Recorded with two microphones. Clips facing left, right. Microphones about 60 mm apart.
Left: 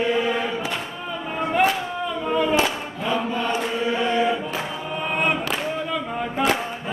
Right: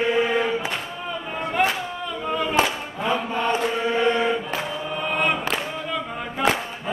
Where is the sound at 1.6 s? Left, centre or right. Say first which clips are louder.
Left 2 dB; centre.